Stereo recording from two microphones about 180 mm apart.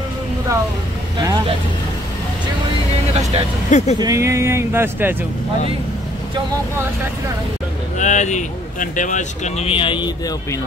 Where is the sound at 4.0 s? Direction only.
20° right (ahead or behind).